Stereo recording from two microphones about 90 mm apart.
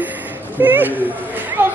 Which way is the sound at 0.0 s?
20° right (ahead or behind).